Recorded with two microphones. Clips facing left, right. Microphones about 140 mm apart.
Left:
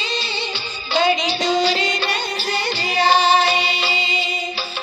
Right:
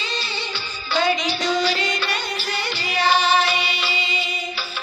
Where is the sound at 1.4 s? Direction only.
25° left (ahead or behind).